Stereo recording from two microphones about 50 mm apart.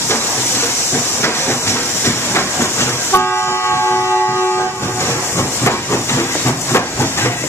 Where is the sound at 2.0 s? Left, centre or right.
Left.